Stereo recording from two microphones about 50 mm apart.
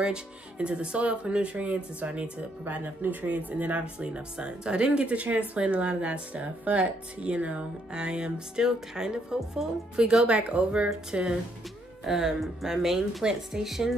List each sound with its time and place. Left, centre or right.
0.0 s speech: centre